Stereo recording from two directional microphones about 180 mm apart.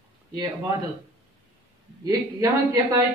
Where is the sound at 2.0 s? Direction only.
20° right (ahead or behind).